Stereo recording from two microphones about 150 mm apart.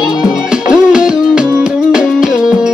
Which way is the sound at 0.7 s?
5° right (ahead or behind).